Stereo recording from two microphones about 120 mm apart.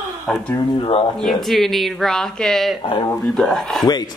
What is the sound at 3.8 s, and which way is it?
Speech, 35° left (ahead or behind).